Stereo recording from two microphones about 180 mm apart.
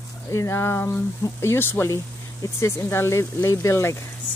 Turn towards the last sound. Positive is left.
turn(degrees=15)  # may be behind; listen again after turning